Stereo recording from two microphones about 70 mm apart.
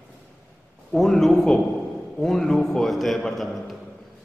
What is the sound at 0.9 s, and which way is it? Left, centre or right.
A man's voice, centre.